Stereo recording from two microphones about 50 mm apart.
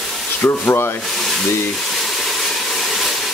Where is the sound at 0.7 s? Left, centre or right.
Left.